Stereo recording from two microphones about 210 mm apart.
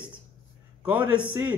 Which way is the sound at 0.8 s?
5° right (ahead or behind).